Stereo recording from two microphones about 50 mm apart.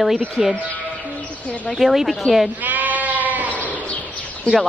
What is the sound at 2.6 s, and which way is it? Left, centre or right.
Sheep, right.